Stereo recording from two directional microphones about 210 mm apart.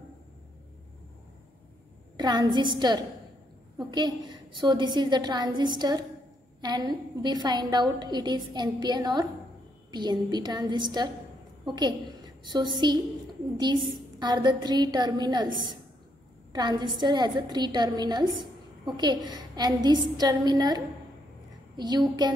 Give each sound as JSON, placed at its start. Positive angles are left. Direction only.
{"t": 2.1, "sound": "a woman's voice", "side_deg": -20}
{"t": 14.2, "sound": "a woman's voice", "side_deg": -20}